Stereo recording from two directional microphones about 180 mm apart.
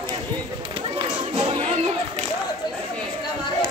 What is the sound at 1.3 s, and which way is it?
Music, 30° right (ahead or behind).